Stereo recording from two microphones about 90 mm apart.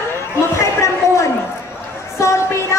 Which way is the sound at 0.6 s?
30° left (ahead or behind).